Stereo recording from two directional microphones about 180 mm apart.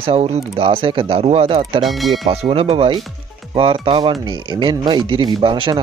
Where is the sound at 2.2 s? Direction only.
30° right (ahead or behind).